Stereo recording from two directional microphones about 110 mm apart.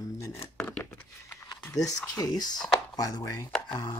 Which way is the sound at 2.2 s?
35° left (ahead or behind).